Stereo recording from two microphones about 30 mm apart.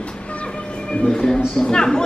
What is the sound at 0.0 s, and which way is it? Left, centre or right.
Train, left.